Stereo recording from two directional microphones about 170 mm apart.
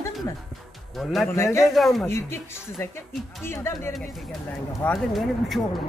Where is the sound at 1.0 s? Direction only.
Centre (ahead or behind).